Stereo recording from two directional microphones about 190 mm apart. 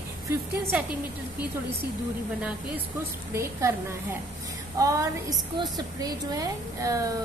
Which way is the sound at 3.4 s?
15° right (ahead or behind).